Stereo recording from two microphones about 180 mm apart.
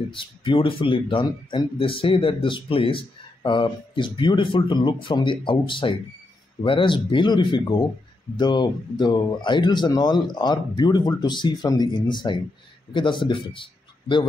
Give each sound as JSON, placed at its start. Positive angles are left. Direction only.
{"t": 0.1, "sound": "a man's voice", "side_deg": 30}